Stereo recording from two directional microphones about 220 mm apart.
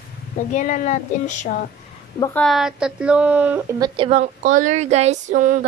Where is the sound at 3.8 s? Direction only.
25° right (ahead or behind).